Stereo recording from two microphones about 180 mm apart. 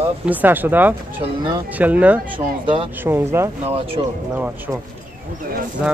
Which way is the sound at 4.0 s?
30° right (ahead or behind).